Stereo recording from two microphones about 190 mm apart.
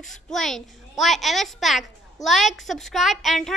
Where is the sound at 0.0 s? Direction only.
Centre (ahead or behind).